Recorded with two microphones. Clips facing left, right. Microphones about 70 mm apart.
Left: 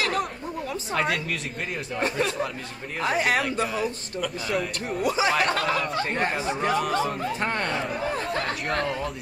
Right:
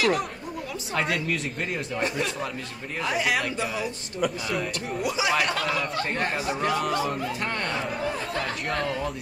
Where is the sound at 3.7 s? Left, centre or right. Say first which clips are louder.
Left 1 dB; centre.